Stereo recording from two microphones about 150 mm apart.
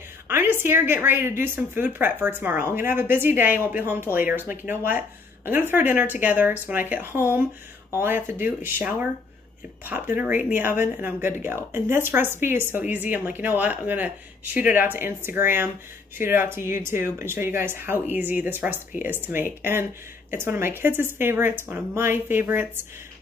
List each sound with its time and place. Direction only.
0.3 s speech: 15° right (ahead or behind)